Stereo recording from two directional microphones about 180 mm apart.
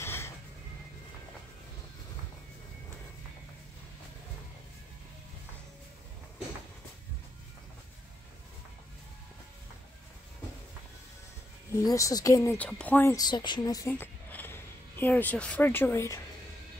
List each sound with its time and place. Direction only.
0.0 s music: 15° left (ahead or behind)
11.7 s speech: 15° left (ahead or behind)
12.5 s speech: 5° left (ahead or behind)